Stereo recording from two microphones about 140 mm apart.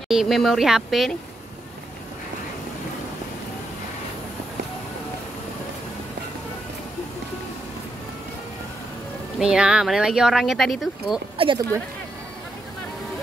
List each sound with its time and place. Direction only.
0.1 s speech: centre (ahead or behind)
9.4 s speech: 5° right (ahead or behind)
11.3 s speech: 40° right (ahead or behind)